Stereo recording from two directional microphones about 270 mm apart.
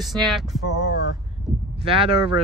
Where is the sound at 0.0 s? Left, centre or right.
Centre.